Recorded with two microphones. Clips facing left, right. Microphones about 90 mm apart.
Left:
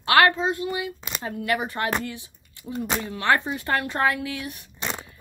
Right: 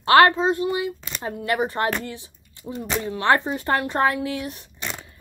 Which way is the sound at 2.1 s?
30° right (ahead or behind).